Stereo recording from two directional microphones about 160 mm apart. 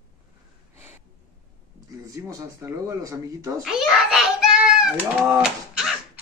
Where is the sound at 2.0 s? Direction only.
20° right (ahead or behind).